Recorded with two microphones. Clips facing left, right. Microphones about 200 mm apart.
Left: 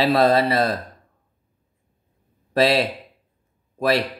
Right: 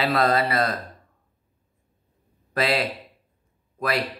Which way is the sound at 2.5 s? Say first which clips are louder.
Left 5 dB; 30° left (ahead or behind).